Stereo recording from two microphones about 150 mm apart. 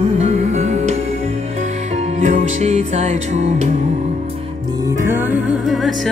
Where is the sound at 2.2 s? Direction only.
50° right (ahead or behind).